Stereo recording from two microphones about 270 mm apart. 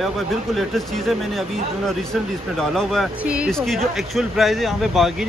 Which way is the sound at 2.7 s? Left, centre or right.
Centre.